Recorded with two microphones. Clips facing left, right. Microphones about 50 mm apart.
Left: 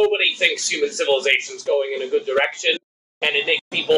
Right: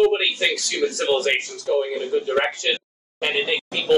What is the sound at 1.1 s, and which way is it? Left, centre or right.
Speech, left.